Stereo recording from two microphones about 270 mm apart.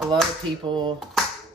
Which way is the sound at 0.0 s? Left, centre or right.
Centre.